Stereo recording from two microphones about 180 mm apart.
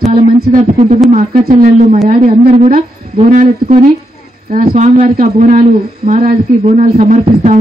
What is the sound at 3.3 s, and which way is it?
Speech, 45° right (ahead or behind).